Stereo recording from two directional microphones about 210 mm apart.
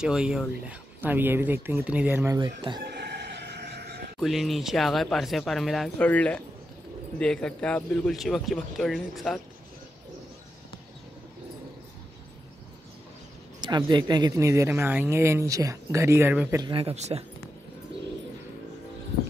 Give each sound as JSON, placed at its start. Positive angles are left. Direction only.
{"t": 0.0, "sound": "speech", "side_deg": -5}
{"t": 2.3, "sound": "speech", "side_deg": -20}
{"t": 2.8, "sound": "neigh", "side_deg": -50}
{"t": 4.2, "sound": "a man's voice", "side_deg": 0}
{"t": 13.6, "sound": "speech", "side_deg": -20}
{"t": 16.7, "sound": "speech", "side_deg": -30}